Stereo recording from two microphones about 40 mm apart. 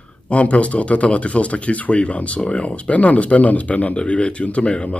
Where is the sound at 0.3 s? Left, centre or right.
Left.